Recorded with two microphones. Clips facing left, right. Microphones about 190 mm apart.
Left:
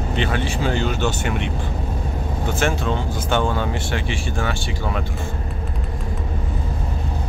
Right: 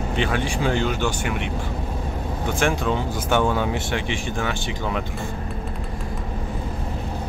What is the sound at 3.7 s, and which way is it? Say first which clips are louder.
Speech: even; 20° right (ahead or behind).